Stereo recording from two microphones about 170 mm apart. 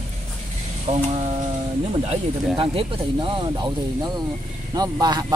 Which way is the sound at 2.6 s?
30° right (ahead or behind).